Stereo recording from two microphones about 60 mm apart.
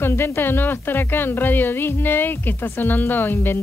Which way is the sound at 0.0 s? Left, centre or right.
Left.